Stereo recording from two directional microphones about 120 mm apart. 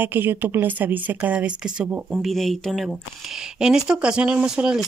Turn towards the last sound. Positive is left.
turn(degrees=-5)  # may be behind; listen again after turning